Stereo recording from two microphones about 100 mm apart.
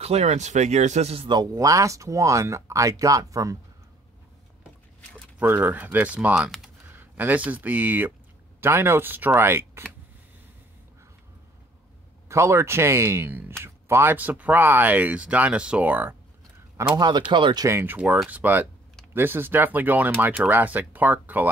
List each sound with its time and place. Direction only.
0.0 s speech: 90° right
1.0 s a man's voice: 75° right (ahead or behind)
1.3 s speech: 40° right (ahead or behind)
5.4 s speech: 15° right (ahead or behind)
12.3 s speech: 30° right (ahead or behind)
16.9 s speech: 45° right (ahead or behind)
17.6 s speech: 20° right (ahead or behind)